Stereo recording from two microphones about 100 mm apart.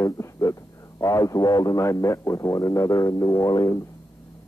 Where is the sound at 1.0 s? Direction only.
35° left (ahead or behind).